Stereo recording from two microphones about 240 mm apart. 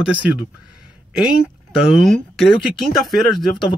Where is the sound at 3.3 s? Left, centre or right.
Centre.